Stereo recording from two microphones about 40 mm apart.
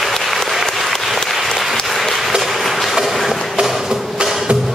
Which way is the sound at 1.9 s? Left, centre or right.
Centre.